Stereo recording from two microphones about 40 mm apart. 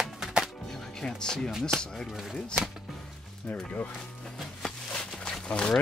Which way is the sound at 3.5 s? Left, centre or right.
Left.